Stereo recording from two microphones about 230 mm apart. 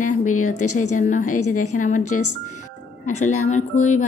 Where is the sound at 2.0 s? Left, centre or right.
Left.